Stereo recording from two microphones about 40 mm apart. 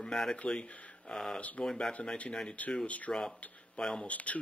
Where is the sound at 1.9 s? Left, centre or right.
Left.